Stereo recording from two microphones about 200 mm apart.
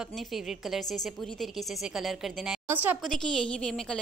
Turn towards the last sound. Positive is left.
turn(degrees=5)  # may be behind; listen again after turning